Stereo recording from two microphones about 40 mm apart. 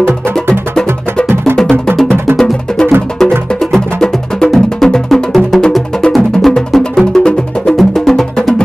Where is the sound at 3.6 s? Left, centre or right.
Centre.